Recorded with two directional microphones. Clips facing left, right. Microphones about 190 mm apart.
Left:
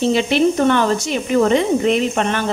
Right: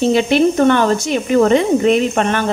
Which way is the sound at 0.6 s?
50° right (ahead or behind).